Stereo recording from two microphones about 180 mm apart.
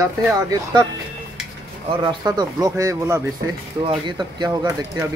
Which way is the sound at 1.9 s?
25° right (ahead or behind).